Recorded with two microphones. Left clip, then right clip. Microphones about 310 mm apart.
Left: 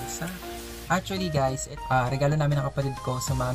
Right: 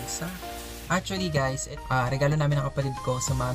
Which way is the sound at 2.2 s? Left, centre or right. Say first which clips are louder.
Left 1 dB; centre.